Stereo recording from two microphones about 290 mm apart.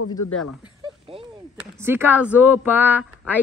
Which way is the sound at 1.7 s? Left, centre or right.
Centre.